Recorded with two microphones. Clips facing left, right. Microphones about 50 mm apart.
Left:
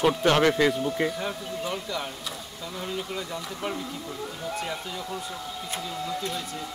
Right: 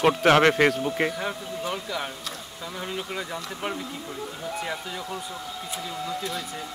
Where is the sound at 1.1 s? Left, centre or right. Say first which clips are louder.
Right 1 dB; centre.